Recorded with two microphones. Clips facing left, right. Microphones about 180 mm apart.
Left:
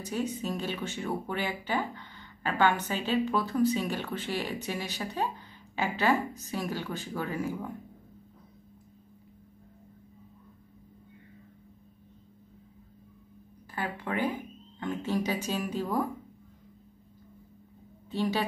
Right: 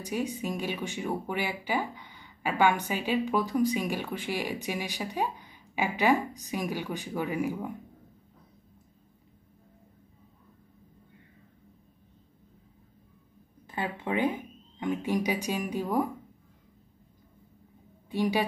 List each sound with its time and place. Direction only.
0.0 s speech: 10° right (ahead or behind)
13.7 s speech: 20° right (ahead or behind)
18.1 s a woman's voice: 10° right (ahead or behind)